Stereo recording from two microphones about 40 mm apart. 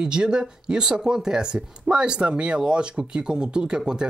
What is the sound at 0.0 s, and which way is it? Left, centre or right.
Speech, centre.